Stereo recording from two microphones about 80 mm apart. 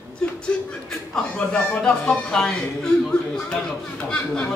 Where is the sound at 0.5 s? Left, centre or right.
Centre.